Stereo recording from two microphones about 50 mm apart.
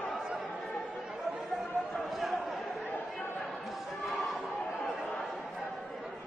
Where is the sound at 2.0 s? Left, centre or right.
Centre.